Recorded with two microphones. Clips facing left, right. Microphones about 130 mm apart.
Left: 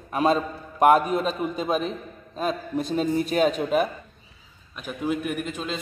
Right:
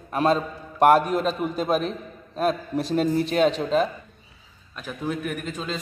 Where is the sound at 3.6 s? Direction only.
10° left (ahead or behind).